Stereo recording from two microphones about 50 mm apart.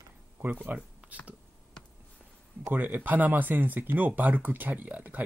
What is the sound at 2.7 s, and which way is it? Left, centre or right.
Speech, right.